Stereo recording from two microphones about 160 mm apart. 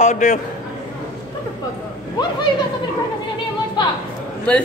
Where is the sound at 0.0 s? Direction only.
50° left (ahead or behind).